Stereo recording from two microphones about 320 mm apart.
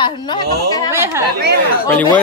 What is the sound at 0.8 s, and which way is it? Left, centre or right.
Speech, centre.